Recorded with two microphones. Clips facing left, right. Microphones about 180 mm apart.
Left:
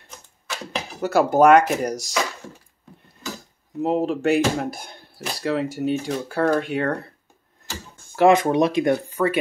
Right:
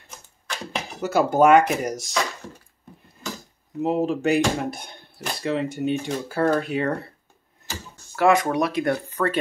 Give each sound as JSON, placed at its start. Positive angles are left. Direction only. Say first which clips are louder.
{"t": 0.5, "sound": "speech", "louder": "left 1 dB", "side_deg": 0}
{"t": 3.8, "sound": "speech", "louder": "left 1 dB", "side_deg": 0}
{"t": 8.2, "sound": "speech", "louder": "left 3 dB", "side_deg": 20}